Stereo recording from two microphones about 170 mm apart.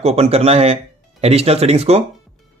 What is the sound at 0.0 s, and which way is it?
Speech, 35° right (ahead or behind).